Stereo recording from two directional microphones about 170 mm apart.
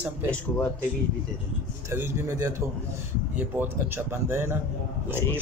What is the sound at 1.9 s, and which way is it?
Speech, 15° right (ahead or behind).